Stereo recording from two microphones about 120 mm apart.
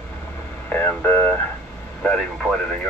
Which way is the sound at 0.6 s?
15° left (ahead or behind).